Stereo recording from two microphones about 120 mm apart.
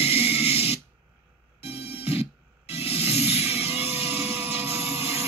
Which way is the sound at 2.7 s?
55° left (ahead or behind).